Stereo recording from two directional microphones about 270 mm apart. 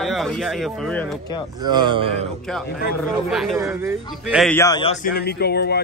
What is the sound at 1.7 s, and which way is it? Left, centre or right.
Speech, centre.